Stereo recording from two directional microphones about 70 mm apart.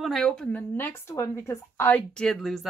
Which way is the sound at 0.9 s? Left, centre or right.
Left.